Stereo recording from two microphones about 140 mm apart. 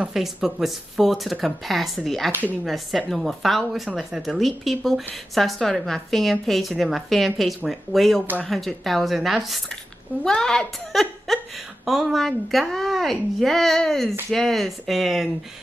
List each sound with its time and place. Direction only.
0.0 s a woman's voice: centre (ahead or behind)